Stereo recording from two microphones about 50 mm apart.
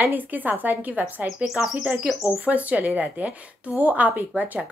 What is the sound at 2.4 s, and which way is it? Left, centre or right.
A woman's voice, right.